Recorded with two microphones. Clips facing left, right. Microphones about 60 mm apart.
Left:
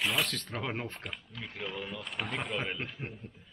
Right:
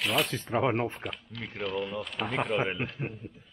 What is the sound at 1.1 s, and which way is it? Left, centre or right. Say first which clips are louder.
Speech: right 4 dB; centre.